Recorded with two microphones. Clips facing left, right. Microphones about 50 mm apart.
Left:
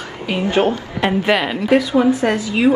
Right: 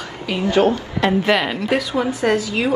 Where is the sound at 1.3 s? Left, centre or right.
Centre.